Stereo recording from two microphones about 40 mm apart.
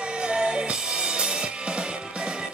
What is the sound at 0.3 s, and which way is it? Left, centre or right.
Music, centre.